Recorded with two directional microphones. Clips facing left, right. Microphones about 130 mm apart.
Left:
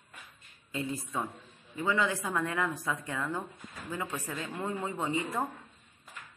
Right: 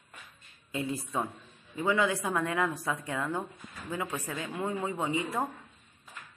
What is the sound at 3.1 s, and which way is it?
Speech, 15° right (ahead or behind).